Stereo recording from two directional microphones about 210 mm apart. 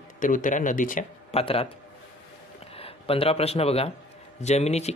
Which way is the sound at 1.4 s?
25° left (ahead or behind).